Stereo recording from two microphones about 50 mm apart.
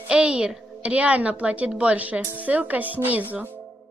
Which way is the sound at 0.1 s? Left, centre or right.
Right.